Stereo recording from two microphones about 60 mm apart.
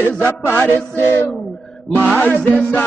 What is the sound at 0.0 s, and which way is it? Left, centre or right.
Music, left.